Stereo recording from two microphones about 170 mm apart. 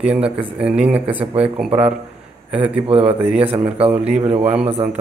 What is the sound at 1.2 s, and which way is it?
A man's voice, 35° right (ahead or behind).